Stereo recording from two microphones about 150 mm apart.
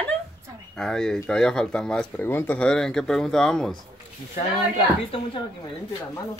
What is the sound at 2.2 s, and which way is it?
Speech, 15° left (ahead or behind).